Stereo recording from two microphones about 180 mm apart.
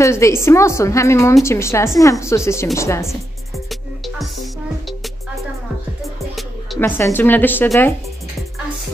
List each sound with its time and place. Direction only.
0.0 s a woman's voice: 15° left (ahead or behind)
6.8 s a woman's voice: 15° left (ahead or behind)